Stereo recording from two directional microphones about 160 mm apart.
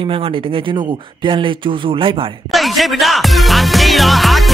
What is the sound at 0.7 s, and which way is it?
Speech, 30° right (ahead or behind).